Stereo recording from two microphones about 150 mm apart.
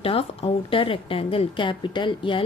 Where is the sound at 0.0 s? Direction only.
40° left (ahead or behind).